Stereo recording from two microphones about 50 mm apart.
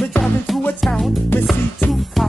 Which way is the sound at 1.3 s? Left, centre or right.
Left.